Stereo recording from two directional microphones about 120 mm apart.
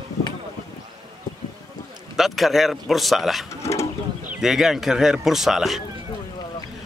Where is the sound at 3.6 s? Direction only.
25° left (ahead or behind).